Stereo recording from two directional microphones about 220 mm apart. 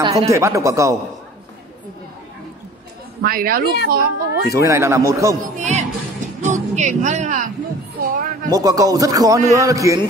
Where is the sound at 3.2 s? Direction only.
40° right (ahead or behind).